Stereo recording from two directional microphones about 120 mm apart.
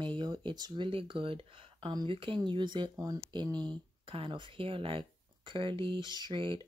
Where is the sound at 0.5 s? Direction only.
40° right (ahead or behind).